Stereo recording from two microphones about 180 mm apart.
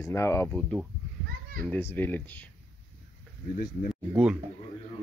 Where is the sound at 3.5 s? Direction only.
50° left (ahead or behind).